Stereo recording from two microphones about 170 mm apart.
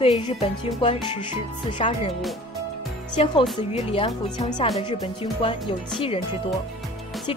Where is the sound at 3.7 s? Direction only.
35° left (ahead or behind).